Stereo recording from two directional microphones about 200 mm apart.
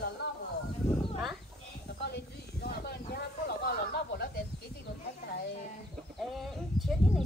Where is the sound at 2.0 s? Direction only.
55° left (ahead or behind).